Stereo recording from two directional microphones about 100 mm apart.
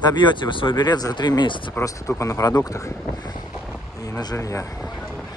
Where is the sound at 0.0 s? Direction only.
50° left (ahead or behind).